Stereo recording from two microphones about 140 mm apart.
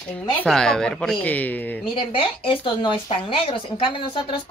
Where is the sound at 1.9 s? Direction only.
40° left (ahead or behind).